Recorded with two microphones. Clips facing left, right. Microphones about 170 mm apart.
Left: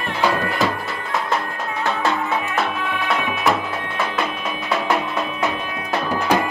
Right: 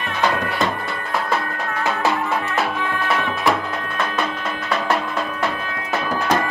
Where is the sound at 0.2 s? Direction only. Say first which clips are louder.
Left 1 dB; 5° left (ahead or behind).